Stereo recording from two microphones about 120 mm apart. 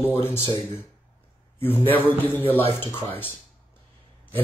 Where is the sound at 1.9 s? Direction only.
15° left (ahead or behind).